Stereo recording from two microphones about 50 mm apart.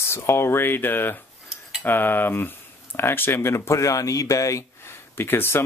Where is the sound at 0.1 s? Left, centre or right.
Left.